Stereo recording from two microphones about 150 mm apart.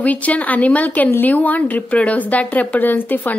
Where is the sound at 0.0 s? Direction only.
10° left (ahead or behind).